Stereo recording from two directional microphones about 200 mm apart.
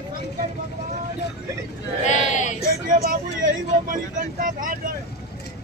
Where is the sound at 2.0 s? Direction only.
35° left (ahead or behind).